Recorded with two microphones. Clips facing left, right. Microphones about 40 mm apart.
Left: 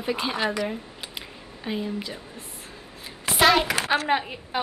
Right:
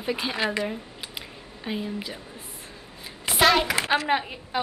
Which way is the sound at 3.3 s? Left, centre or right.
Centre.